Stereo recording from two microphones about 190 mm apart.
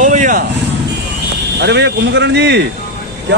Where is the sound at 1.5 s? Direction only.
60° right (ahead or behind).